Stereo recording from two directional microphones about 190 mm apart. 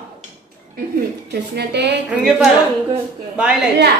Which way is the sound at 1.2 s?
60° right (ahead or behind).